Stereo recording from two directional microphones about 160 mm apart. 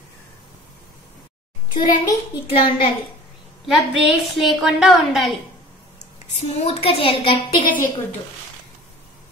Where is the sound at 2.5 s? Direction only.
35° left (ahead or behind).